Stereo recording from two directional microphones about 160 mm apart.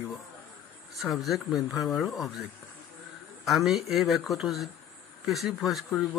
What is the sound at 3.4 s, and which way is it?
Speech, centre (ahead or behind).